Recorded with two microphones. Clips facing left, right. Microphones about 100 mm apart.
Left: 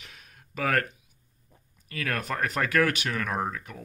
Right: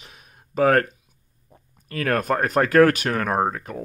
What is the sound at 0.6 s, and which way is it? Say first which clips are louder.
Speech: right 9 dB; 35° right (ahead or behind).